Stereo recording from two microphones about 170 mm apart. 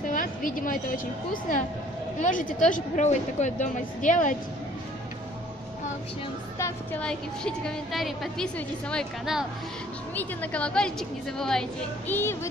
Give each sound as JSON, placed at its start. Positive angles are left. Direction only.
{"t": 0.1, "sound": "speech", "side_deg": 55}
{"t": 6.6, "sound": "a woman's voice", "side_deg": 10}
{"t": 10.1, "sound": "a woman's voice", "side_deg": 10}